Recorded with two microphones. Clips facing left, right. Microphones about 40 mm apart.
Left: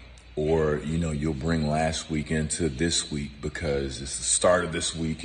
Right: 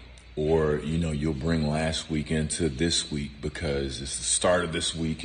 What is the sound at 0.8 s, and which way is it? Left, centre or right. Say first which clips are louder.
Speech: even; right.